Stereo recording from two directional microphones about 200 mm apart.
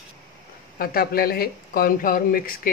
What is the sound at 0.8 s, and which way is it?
Speech, 50° left (ahead or behind).